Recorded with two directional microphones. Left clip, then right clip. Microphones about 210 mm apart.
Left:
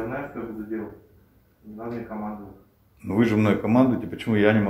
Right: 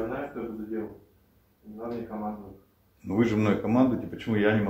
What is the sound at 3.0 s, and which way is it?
Speech, 25° left (ahead or behind).